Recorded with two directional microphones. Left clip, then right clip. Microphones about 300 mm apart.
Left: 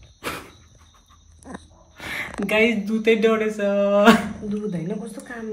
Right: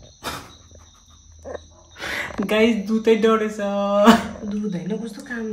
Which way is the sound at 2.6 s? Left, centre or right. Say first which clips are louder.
Even; centre.